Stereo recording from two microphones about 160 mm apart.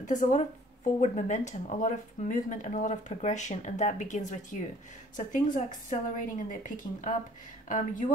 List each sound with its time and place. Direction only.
0.0 s a woman's voice: 50° left (ahead or behind)